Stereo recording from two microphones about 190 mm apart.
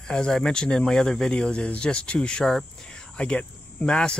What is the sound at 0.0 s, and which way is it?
Speech, 5° left (ahead or behind).